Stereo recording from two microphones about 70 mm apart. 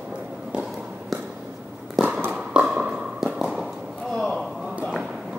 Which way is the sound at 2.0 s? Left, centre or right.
Centre.